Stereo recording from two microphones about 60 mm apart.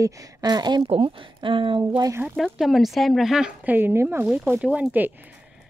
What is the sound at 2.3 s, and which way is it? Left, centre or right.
Speech, centre.